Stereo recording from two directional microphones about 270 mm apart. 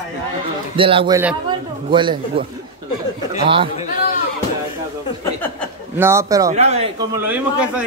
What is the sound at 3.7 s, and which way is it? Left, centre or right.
Speech, left.